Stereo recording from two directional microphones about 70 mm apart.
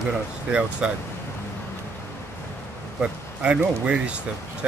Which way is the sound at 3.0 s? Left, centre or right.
Centre.